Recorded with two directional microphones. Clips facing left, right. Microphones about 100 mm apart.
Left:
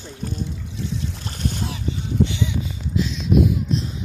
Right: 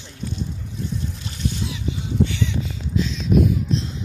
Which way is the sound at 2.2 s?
15° left (ahead or behind).